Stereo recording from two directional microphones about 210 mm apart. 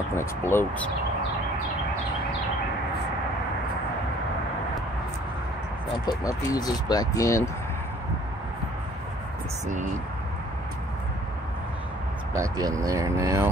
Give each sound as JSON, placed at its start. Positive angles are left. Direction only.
{"t": 0.1, "sound": "speech", "side_deg": 10}
{"t": 6.0, "sound": "speech", "side_deg": 15}
{"t": 12.4, "sound": "speech", "side_deg": -15}